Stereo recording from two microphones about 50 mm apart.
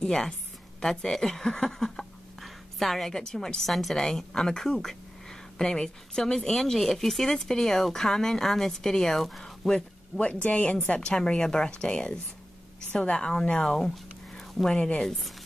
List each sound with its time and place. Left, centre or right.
0.0 s a woman's voice: centre
3.2 s a woman's voice: centre